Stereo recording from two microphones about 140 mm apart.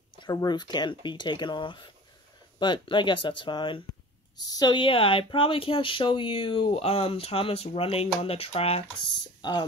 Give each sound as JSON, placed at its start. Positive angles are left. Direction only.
{"t": 0.2, "sound": "speech", "side_deg": 30}
{"t": 9.0, "sound": "speech", "side_deg": 30}